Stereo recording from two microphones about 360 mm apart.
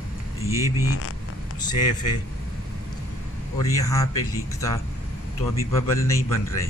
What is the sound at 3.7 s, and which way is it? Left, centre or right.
Speech, centre.